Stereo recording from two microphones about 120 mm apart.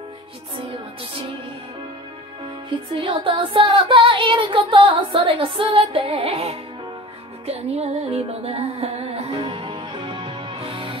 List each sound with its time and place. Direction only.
2.4 s music: 45° right (ahead or behind)